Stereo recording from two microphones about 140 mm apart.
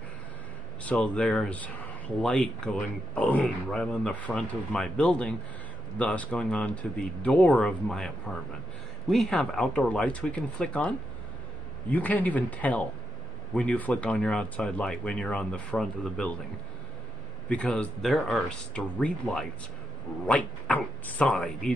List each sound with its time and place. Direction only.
0.8 s speech: 10° left (ahead or behind)
9.1 s speech: 5° left (ahead or behind)
17.5 s speech: 10° left (ahead or behind)